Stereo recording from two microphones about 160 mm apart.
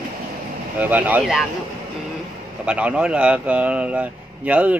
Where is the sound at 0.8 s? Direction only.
10° right (ahead or behind).